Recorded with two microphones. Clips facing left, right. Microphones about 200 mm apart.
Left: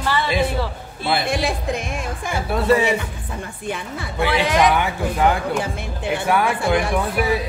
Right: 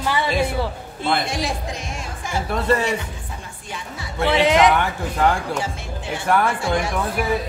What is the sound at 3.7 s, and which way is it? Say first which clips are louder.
Speech: left 6 dB; 55° left (ahead or behind).